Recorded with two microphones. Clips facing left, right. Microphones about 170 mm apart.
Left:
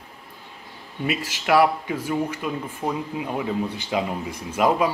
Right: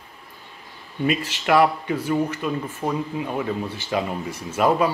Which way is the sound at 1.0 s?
10° left (ahead or behind).